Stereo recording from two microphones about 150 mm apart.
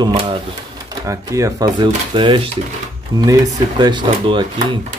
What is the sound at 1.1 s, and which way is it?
Speech, 20° right (ahead or behind).